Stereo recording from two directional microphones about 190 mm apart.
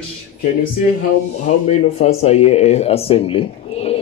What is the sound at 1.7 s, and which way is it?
Speech, 35° left (ahead or behind).